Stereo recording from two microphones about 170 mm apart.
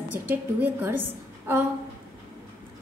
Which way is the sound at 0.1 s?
10° right (ahead or behind).